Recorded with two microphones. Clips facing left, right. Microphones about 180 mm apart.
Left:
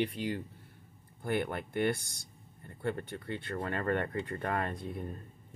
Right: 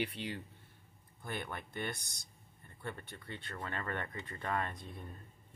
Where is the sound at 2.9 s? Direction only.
60° left (ahead or behind).